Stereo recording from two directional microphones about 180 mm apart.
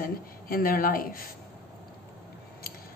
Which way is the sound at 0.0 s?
55° left (ahead or behind).